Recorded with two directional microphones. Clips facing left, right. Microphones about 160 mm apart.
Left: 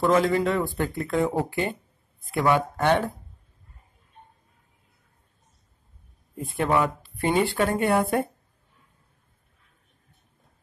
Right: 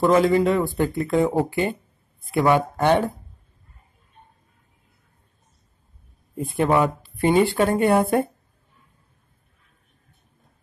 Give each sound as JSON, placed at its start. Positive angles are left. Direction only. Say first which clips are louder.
{"t": 0.0, "sound": "speech", "louder": "right 4 dB", "side_deg": -10}
{"t": 6.3, "sound": "a woman's voice", "louder": "right 4 dB", "side_deg": -20}